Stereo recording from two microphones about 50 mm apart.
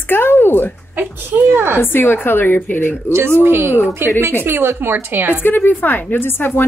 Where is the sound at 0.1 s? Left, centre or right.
Left.